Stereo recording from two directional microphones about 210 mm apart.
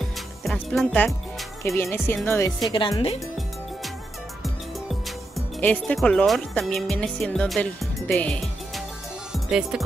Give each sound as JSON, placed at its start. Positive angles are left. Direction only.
{"t": 0.4, "sound": "music", "side_deg": 0}
{"t": 1.8, "sound": "speech", "side_deg": 10}
{"t": 2.7, "sound": "speech", "side_deg": 25}
{"t": 5.6, "sound": "speech", "side_deg": 5}
{"t": 9.3, "sound": "music", "side_deg": -5}